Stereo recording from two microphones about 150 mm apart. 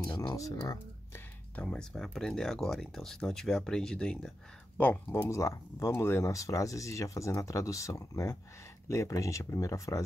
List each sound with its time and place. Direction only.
0.1 s speech: 30° left (ahead or behind)
1.6 s speech: 5° left (ahead or behind); by 10.0 s 20° left (ahead or behind)